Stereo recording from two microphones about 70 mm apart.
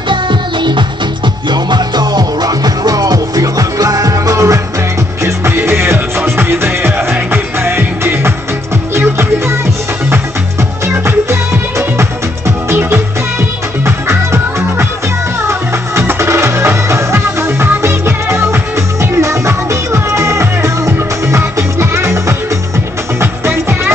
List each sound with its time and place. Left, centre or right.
1.5 s music: right
5.6 s music: right
12.0 s music: right
23.4 s music: right